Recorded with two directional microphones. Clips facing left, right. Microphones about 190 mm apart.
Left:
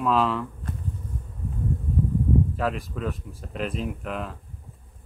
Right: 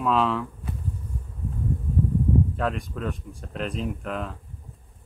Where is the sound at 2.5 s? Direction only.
Centre (ahead or behind).